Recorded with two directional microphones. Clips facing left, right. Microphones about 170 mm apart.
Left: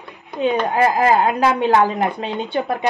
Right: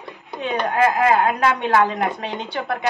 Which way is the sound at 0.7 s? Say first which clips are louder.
Right 1 dB; 30° left (ahead or behind).